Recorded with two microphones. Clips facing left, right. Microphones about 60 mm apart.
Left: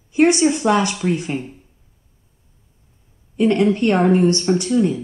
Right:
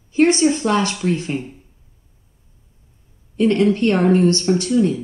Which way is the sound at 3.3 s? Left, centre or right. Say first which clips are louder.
Even; centre.